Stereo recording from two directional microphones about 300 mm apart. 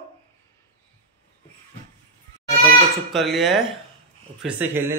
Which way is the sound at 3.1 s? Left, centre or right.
Centre.